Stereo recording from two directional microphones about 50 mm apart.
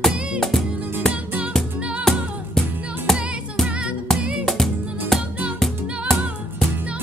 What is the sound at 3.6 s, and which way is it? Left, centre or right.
Music, right.